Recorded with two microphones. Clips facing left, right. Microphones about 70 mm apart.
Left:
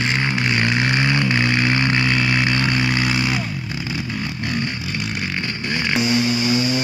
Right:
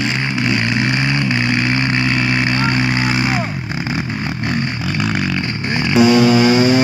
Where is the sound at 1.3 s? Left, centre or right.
Centre.